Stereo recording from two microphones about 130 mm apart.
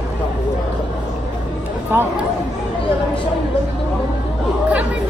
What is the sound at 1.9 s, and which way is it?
Speech, 15° right (ahead or behind).